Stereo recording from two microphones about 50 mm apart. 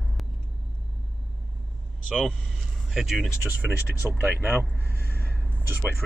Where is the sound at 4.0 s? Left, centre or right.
Right.